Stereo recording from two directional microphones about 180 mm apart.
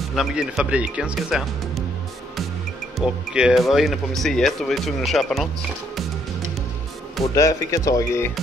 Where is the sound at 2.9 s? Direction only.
5° right (ahead or behind).